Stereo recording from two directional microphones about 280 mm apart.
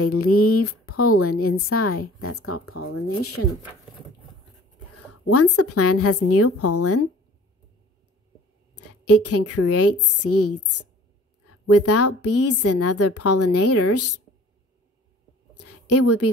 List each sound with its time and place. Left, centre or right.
0.0 s speech: left
4.9 s speech: left
8.7 s a woman's voice: left
15.5 s a sound: left